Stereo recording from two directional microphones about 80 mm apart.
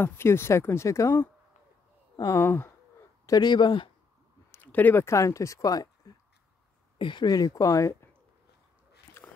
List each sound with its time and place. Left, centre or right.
0.0 s speech: left
2.3 s speech: left
3.3 s speech: left
4.5 s a sound: left
5.0 s speech: left
7.0 s speech: left
7.2 s speech: left
9.2 s a sound: left